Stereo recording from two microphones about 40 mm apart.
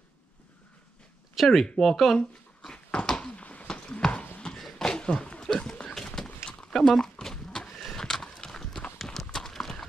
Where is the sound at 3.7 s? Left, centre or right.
Left.